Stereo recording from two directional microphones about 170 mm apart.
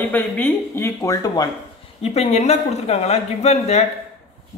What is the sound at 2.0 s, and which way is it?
A man's voice, 40° left (ahead or behind).